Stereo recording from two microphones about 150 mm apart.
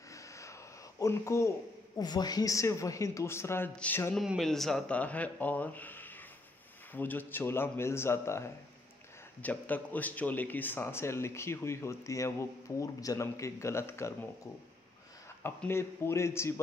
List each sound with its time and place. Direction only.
0.1 s a sound: 20° left (ahead or behind)
2.0 s speech: 25° left (ahead or behind); by 4.2 s 10° left (ahead or behind)
4.2 s speech: centre (ahead or behind); by 14.1 s 15° left (ahead or behind)
15.4 s speech: 15° left (ahead or behind)